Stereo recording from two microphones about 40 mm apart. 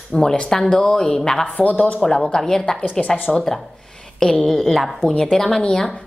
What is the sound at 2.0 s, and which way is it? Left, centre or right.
Speech, centre.